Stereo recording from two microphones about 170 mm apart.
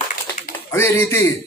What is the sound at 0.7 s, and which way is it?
Speech, 15° left (ahead or behind).